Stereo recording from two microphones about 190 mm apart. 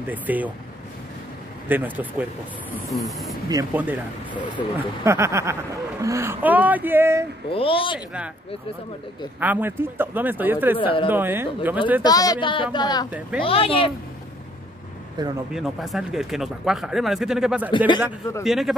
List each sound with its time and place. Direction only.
0.1 s speech: 10° right (ahead or behind)
1.7 s speech: 10° right (ahead or behind)
3.4 s speech: 15° right (ahead or behind)
4.3 s speech: 25° left (ahead or behind)
4.7 s speech: 15° right (ahead or behind)
7.5 s speech: 30° left (ahead or behind)
9.4 s speech: 10° right (ahead or behind)
10.8 s speech: 25° left (ahead or behind)
11.1 s speech: 10° right (ahead or behind)
12.0 s speech: 20° left (ahead or behind)
15.2 s speech: 20° right (ahead or behind)
15.5 s speech: centre (ahead or behind)
17.6 s speech: 25° left (ahead or behind)
18.4 s speech: centre (ahead or behind)